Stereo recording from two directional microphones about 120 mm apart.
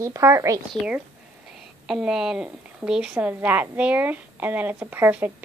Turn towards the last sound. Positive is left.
turn(degrees=-15)  # may be behind; listen again after turning